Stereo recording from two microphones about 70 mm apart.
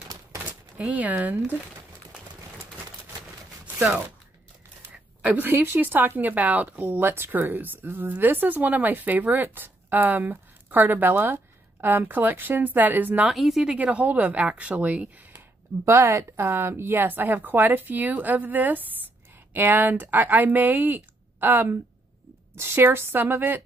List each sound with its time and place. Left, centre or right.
0.7 s speech: centre
3.6 s chopping: centre
5.2 s speech: right
13.3 s speech: centre
13.7 s speech: right
15.8 s a woman's voice: right